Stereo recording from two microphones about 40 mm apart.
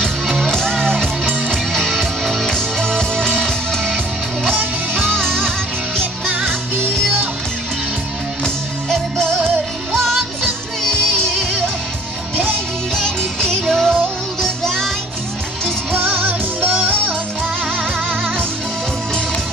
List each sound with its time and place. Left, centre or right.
0.5 s music: centre
2.5 s music: centre
8.8 s music: centre
12.9 s music: centre
13.7 s music: centre
14.4 s music: centre
15.9 s music: right